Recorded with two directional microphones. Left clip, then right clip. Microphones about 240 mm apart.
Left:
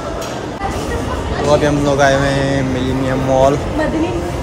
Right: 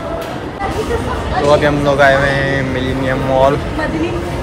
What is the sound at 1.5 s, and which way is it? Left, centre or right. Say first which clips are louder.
Speech: right 1 dB; centre.